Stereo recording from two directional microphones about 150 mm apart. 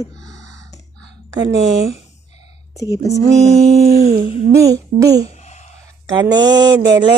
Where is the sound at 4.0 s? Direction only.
50° right (ahead or behind).